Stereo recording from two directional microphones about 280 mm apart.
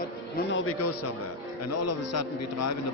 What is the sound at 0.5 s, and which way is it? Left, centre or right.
Speech, left.